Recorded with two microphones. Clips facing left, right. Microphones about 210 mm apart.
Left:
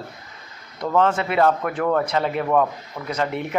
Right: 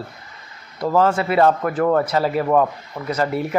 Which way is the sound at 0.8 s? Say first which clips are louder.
Right 2 dB; 5° right (ahead or behind).